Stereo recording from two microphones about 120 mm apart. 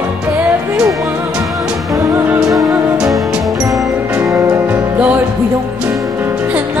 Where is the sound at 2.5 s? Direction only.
5° right (ahead or behind).